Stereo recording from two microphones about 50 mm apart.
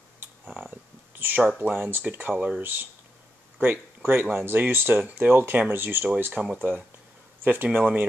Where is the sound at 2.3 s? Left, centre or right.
Right.